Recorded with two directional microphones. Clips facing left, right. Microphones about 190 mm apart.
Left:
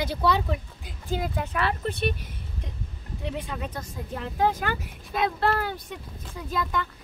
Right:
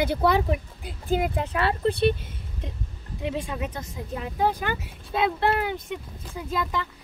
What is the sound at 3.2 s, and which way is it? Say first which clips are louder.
Speech: right 3 dB; 15° right (ahead or behind).